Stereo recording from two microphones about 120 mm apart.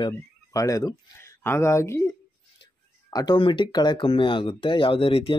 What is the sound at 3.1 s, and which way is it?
Speech, 40° left (ahead or behind).